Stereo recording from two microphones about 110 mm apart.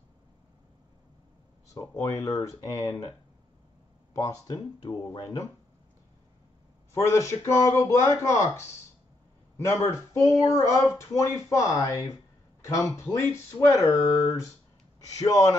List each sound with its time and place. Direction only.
1.7 s speech: 30° left (ahead or behind)
4.1 s speech: 30° left (ahead or behind)
6.9 s speech: 25° left (ahead or behind)